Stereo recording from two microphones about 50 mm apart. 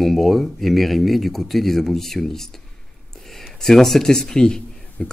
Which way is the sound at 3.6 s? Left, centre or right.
Centre.